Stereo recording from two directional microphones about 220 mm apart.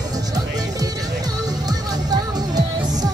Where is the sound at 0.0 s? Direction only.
15° right (ahead or behind).